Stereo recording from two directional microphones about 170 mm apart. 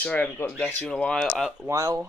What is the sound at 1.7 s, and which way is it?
Speech, 20° right (ahead or behind).